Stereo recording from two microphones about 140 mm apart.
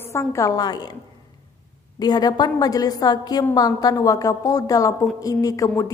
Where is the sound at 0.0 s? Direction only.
20° left (ahead or behind).